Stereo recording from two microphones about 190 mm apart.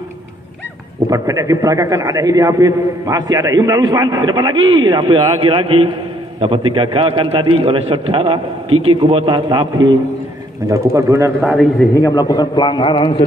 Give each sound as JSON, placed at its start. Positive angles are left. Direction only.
{"t": 1.1, "sound": "a man's voice", "side_deg": -15}
{"t": 11.0, "sound": "a man's voice", "side_deg": -15}
{"t": 11.5, "sound": "a man's voice", "side_deg": 10}
{"t": 12.1, "sound": "a man's voice", "side_deg": 20}